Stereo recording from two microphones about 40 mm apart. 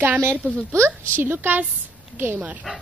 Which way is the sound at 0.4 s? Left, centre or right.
Right.